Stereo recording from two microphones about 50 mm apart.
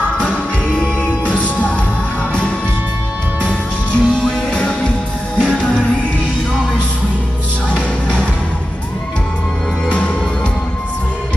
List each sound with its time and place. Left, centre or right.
0.2 s music: left
3.4 s music: centre
7.7 s music: left
9.8 s music: left